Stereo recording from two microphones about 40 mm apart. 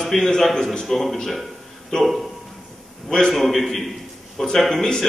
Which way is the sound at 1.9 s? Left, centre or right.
Centre.